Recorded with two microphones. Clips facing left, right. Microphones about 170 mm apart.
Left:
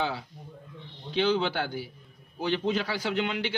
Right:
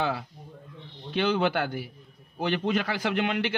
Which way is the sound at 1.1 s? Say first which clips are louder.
Right 1 dB; 55° right (ahead or behind).